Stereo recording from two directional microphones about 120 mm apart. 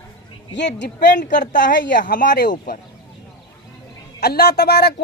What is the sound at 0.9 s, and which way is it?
Speech, 90° left.